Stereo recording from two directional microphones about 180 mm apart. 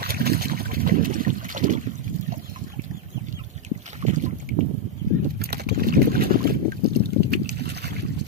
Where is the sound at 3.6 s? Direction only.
40° right (ahead or behind).